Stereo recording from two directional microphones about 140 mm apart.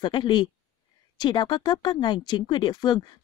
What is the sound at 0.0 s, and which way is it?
Speech, 35° left (ahead or behind).